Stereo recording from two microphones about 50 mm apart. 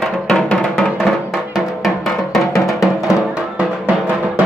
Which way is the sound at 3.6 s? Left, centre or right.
Right.